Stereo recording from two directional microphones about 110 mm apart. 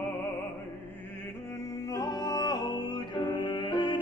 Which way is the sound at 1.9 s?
35° left (ahead or behind).